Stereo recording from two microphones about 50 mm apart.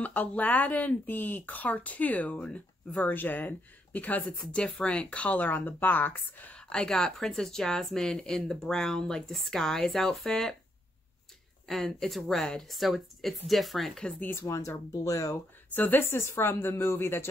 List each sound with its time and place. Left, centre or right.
0.0 s speech: left
5.5 s speech: left
6.5 s a woman's voice: centre
11.6 s speech: centre
14.3 s speech: left
15.7 s speech: left